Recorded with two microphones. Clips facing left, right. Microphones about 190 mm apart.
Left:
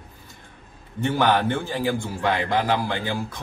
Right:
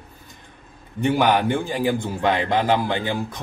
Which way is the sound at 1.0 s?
15° right (ahead or behind).